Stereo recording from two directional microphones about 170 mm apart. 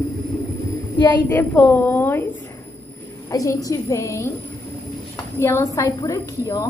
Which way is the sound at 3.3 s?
20° left (ahead or behind).